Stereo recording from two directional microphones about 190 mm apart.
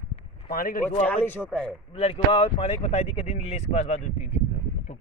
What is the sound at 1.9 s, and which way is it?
Speech, 30° left (ahead or behind).